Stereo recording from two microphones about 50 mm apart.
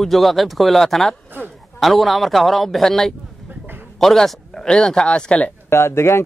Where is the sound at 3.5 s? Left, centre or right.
Right.